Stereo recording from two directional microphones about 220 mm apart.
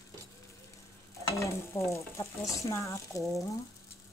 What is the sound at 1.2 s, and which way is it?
Stir, 15° left (ahead or behind).